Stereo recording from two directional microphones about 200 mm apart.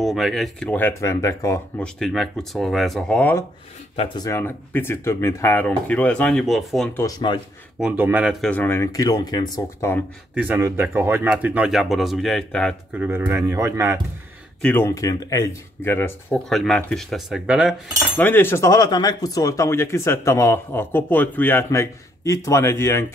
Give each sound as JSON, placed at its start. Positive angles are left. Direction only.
{"t": 0.0, "sound": "speech", "side_deg": 0}
{"t": 2.0, "sound": "speech", "side_deg": 0}
{"t": 3.9, "sound": "speech", "side_deg": 25}
{"t": 6.9, "sound": "speech", "side_deg": 15}
{"t": 7.8, "sound": "speech", "side_deg": -5}
{"t": 10.3, "sound": "speech", "side_deg": -10}
{"t": 12.9, "sound": "speech", "side_deg": -10}
{"t": 14.6, "sound": "speech", "side_deg": 10}
{"t": 18.1, "sound": "speech", "side_deg": 10}